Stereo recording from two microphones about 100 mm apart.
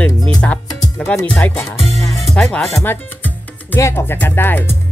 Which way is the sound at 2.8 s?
20° left (ahead or behind).